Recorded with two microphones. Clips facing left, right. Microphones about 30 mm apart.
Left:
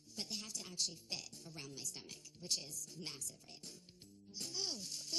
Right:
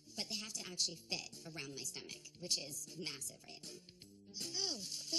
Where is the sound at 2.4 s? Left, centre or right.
Right.